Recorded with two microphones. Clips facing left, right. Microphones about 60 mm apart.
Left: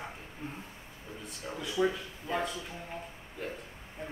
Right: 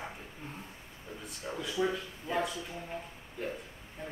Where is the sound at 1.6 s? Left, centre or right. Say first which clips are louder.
Left 2 dB; centre.